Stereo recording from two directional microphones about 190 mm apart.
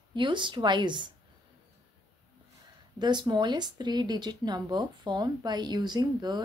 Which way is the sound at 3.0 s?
25° right (ahead or behind).